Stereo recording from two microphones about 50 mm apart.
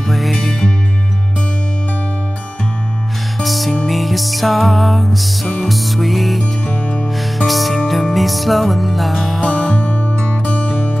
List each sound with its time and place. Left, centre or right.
0.1 s music: centre
3.4 s music: centre
6.7 s music: left
7.3 s music: centre
9.7 s music: left